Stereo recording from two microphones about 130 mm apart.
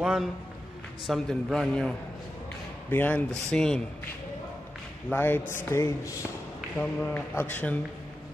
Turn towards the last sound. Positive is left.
turn(degrees=15)  # may be behind; listen again after turning